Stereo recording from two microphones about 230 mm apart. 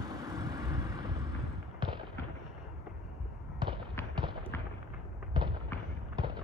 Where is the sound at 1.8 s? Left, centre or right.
Centre.